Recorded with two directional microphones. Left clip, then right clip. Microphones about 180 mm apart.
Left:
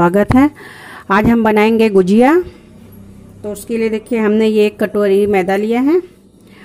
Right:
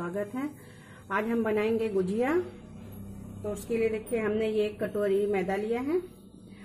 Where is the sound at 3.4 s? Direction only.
55° left (ahead or behind).